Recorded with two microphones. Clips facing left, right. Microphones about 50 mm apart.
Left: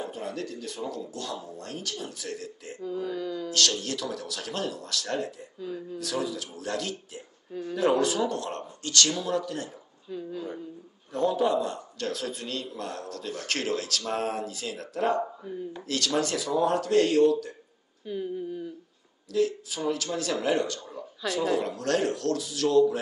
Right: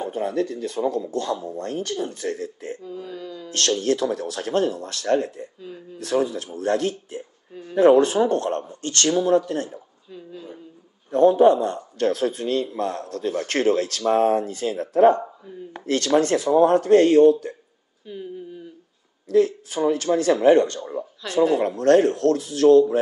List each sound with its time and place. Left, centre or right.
0.0 s a man's voice: right
2.9 s speech: centre
3.4 s a man's voice: right
11.1 s a man's voice: right
19.2 s a man's voice: right